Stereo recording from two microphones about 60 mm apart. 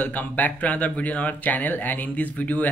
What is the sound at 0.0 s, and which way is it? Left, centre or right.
Speech, left.